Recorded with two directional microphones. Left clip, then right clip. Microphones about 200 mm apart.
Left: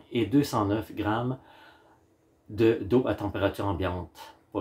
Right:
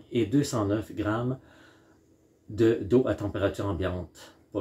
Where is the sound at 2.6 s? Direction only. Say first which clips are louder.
Even; centre (ahead or behind).